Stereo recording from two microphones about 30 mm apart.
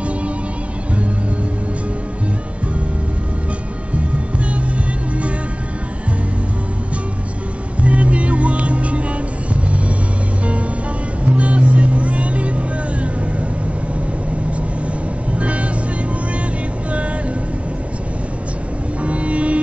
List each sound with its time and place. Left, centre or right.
7.8 s music: right
11.2 s vehicle: right
15.3 s vehicle: right
19.0 s music: right